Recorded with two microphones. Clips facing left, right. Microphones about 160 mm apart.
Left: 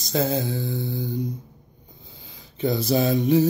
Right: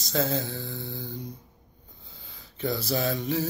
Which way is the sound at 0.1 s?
15° left (ahead or behind).